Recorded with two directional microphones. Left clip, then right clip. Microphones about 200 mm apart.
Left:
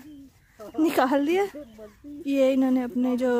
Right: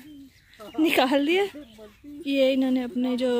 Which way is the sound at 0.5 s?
45° right (ahead or behind).